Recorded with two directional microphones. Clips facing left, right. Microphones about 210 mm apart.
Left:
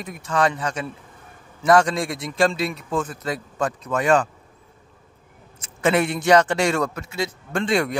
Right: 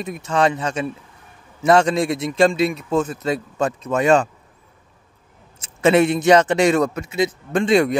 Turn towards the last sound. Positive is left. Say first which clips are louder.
# right 6 dB
turn(degrees=-20)  # may be behind; listen again after turning